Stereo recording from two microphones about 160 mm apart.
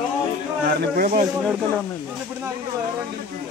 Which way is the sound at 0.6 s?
60° right (ahead or behind).